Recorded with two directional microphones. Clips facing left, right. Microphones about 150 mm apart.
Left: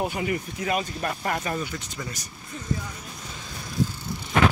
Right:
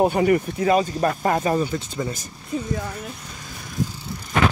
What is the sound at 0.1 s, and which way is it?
Speech, 50° right (ahead or behind).